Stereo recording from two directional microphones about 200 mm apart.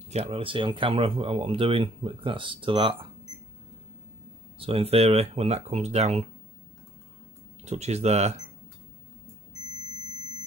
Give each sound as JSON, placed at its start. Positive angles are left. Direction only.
{"t": 0.1, "sound": "speech", "side_deg": -30}
{"t": 4.6, "sound": "speech", "side_deg": -30}
{"t": 7.6, "sound": "speech", "side_deg": -35}